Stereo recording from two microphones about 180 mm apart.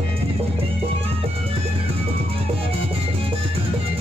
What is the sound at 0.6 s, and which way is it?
Music, 30° right (ahead or behind).